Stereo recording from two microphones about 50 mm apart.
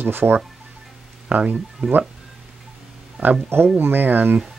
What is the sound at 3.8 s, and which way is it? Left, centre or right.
Speech, right.